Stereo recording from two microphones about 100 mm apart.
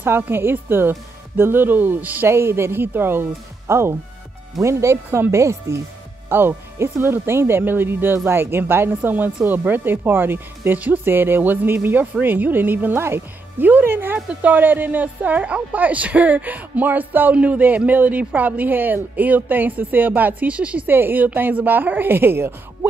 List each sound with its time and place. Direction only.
0.0 s speech: 20° right (ahead or behind)